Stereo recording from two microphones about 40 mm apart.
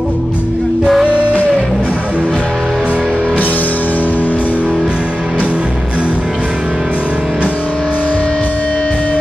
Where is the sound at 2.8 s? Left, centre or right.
Right.